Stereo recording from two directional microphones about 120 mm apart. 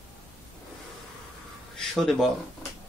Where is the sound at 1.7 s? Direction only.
Centre (ahead or behind).